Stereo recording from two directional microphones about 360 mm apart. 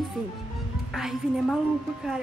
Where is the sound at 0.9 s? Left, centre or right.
Centre.